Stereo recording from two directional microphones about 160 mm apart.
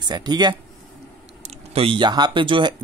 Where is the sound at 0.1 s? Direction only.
25° right (ahead or behind).